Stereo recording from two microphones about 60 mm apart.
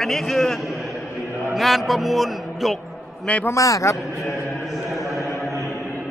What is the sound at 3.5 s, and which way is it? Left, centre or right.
Speech, left.